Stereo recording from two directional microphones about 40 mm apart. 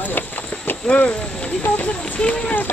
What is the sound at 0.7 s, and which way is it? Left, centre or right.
Clip-clop, left.